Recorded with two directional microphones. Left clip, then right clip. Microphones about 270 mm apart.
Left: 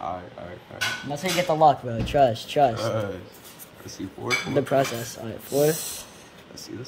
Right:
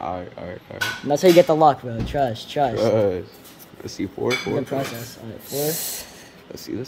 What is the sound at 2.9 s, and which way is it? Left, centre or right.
Speech, right.